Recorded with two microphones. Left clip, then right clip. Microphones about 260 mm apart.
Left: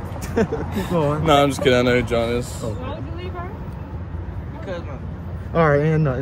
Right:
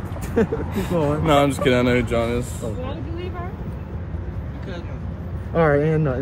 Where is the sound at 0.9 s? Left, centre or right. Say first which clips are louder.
Left 1 dB; left.